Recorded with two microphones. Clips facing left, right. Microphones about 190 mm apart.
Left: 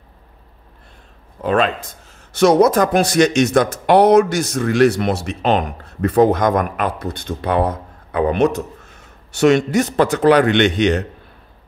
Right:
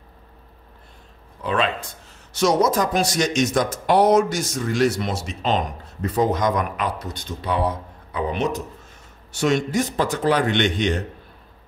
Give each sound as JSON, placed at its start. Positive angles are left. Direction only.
{"t": 1.4, "sound": "speech", "side_deg": 45}
{"t": 2.3, "sound": "a man's voice", "side_deg": 60}